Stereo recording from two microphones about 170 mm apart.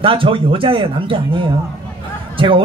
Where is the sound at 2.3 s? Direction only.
30° right (ahead or behind).